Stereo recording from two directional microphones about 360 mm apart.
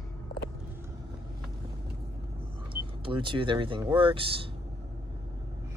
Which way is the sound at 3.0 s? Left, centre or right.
Centre.